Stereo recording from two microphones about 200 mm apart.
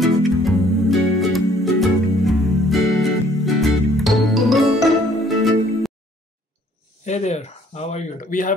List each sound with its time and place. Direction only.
0.0 s music: centre (ahead or behind)
7.1 s speech: 35° left (ahead or behind)